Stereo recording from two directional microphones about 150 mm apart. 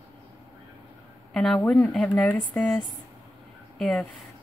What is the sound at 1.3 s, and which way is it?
A woman's voice, 5° left (ahead or behind).